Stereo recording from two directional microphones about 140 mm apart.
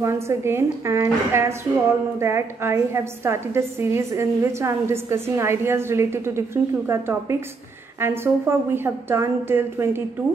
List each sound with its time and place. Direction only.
0.0 s a woman's voice: 20° right (ahead or behind)